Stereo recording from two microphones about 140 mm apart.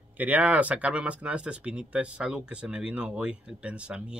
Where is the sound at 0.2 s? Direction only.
10° right (ahead or behind).